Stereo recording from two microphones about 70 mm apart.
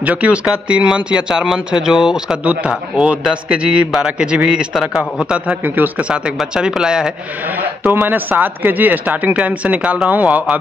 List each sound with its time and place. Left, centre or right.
0.0 s speech: right
5.5 s speech: right
6.0 s speech: centre
7.8 s speech: right